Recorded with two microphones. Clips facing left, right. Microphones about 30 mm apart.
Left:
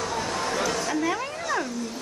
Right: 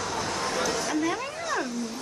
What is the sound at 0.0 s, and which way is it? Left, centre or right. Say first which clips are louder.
Chatter: left 2 dB; left.